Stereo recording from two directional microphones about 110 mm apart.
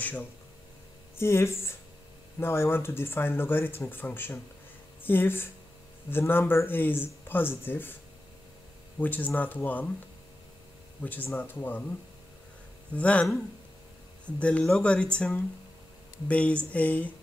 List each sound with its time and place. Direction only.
1.1 s speech: 25° left (ahead or behind)
9.0 s speech: 15° left (ahead or behind)
11.0 s speech: 15° left (ahead or behind)
12.9 s speech: 10° left (ahead or behind)